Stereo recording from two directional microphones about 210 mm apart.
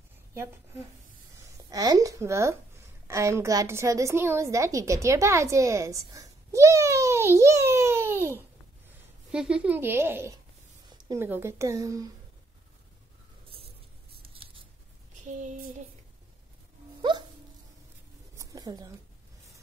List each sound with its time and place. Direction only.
0.3 s a woman's voice: 10° right (ahead or behind)
14.2 s scissors: 25° right (ahead or behind)
15.2 s child singing: 35° right (ahead or behind)
18.3 s a sound: 15° right (ahead or behind)